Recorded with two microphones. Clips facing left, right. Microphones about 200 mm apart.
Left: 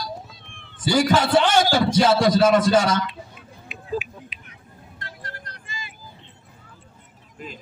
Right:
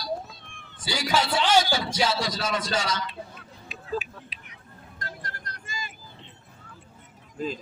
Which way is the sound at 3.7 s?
35° right (ahead or behind).